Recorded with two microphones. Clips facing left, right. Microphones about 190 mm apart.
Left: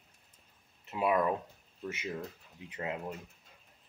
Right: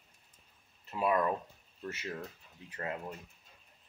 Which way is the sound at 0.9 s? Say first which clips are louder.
Left 1 dB; 15° left (ahead or behind).